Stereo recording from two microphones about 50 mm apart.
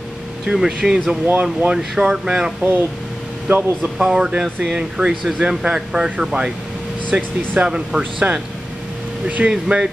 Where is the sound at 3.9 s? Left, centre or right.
Centre.